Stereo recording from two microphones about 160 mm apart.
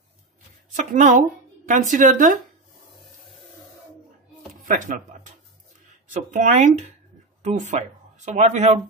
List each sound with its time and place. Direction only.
0.7 s a woman's voice: 50° right (ahead or behind)
4.6 s speech: 60° right (ahead or behind)